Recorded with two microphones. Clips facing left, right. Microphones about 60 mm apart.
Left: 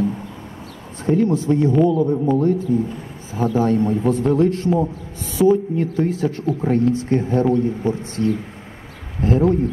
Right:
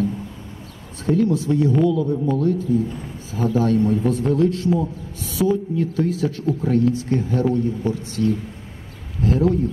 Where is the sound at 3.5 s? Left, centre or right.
Left.